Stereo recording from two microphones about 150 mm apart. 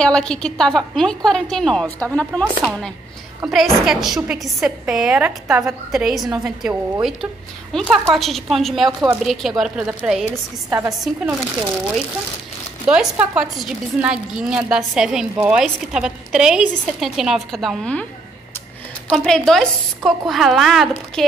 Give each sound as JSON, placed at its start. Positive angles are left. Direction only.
{"t": 0.0, "sound": "a woman's voice", "side_deg": 5}
{"t": 10.7, "sound": "a woman's voice", "side_deg": -15}
{"t": 12.8, "sound": "a woman's voice", "side_deg": -5}
{"t": 19.0, "sound": "a woman's voice", "side_deg": 0}